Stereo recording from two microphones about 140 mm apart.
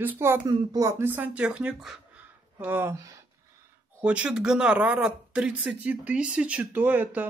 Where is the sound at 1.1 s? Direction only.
10° right (ahead or behind).